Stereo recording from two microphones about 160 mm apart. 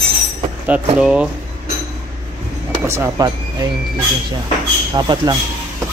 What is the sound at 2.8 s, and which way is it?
Speech, 15° right (ahead or behind).